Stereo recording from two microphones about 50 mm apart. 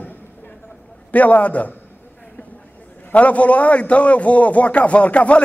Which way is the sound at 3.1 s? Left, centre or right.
Left.